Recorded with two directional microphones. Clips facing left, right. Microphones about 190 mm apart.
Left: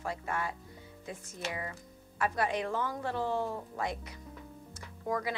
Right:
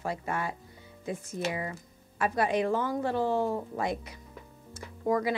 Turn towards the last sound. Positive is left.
turn(degrees=-15)  # may be behind; listen again after turning